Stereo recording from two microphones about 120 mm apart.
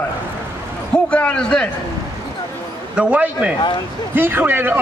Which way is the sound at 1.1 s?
10° left (ahead or behind).